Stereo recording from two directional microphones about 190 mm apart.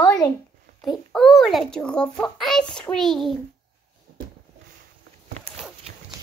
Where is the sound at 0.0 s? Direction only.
20° left (ahead or behind).